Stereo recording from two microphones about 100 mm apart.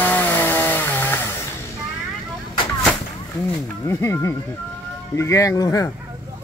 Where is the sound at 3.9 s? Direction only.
25° left (ahead or behind).